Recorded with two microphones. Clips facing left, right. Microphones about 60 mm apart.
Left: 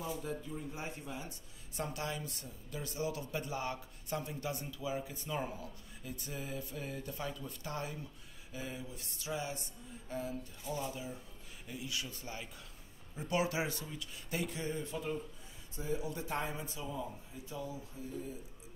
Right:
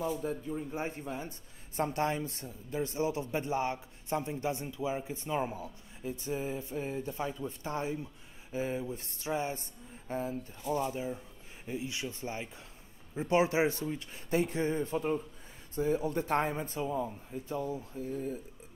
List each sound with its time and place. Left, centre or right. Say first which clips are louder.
0.0 s a man's voice: right 6 dB; right